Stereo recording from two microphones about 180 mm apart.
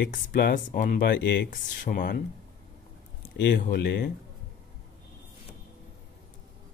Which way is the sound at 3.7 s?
70° left (ahead or behind).